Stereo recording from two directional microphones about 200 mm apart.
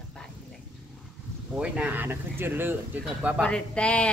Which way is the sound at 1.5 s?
5° right (ahead or behind).